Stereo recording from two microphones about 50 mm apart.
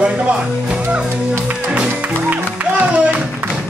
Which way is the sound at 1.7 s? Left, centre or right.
Right.